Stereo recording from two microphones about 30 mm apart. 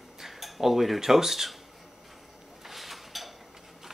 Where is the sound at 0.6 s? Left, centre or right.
Centre.